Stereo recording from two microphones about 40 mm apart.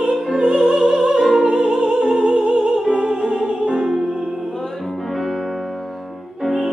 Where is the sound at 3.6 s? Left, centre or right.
Centre.